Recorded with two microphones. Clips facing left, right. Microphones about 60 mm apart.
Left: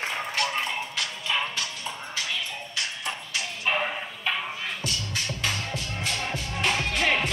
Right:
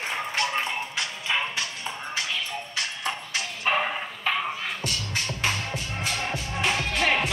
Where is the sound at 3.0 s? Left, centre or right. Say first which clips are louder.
Right 2 dB; right.